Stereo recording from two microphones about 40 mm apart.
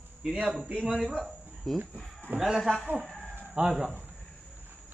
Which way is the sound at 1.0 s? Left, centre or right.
Centre.